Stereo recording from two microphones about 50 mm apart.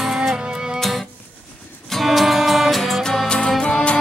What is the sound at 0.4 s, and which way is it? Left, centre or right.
Music, centre.